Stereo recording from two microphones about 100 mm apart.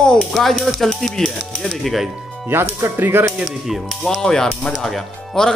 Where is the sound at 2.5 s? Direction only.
20° right (ahead or behind).